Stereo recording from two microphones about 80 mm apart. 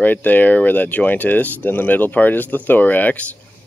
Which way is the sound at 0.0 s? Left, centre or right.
Left.